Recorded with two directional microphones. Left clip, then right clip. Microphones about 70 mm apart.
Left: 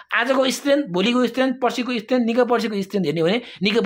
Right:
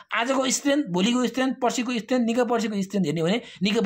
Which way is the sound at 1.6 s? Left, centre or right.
Right.